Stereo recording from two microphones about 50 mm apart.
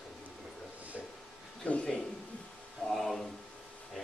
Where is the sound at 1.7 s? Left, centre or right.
Left.